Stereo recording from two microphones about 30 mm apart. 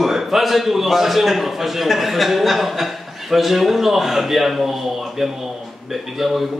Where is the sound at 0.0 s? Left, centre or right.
Centre.